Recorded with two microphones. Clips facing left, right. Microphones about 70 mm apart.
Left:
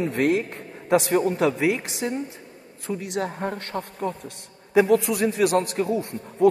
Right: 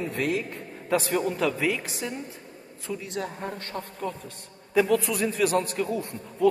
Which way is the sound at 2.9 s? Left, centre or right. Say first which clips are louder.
Left 4 dB; left.